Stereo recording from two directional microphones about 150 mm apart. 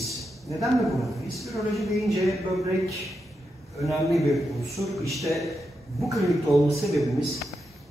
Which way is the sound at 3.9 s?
Centre (ahead or behind).